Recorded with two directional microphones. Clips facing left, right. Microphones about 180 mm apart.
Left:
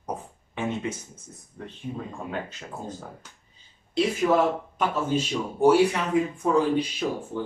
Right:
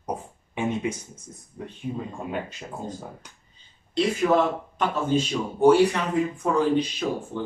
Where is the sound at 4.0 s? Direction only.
5° left (ahead or behind).